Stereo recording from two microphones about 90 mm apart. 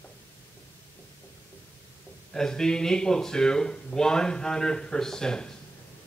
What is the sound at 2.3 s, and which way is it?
A man's voice, 5° left (ahead or behind).